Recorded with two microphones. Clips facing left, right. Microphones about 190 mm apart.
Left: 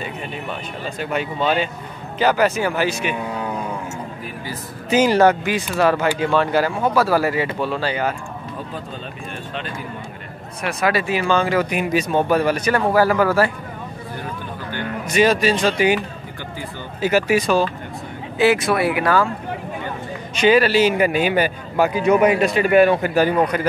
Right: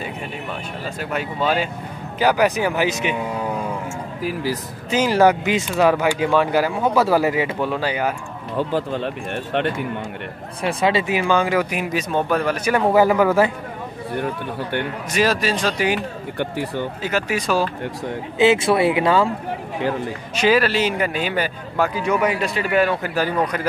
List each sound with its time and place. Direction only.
0.9 s speech: 5° right (ahead or behind)
4.2 s speech: 90° right
4.8 s speech: 5° left (ahead or behind)
5.1 s speech: 10° right (ahead or behind)
8.5 s speech: 75° right (ahead or behind)
10.6 s speech: 30° right (ahead or behind); by 12.5 s 5° left (ahead or behind)
12.8 s speech: 20° right (ahead or behind)
14.1 s speech: 65° right (ahead or behind)
15.1 s speech: centre (ahead or behind)
16.3 s speech: 70° right (ahead or behind)
17.0 s speech: 10° left (ahead or behind)
18.4 s speech: 25° right (ahead or behind)
20.3 s a man's voice: centre (ahead or behind); by 23.3 s 15° left (ahead or behind)